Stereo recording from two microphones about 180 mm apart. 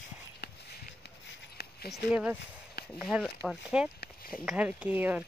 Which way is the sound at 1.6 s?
60° left (ahead or behind).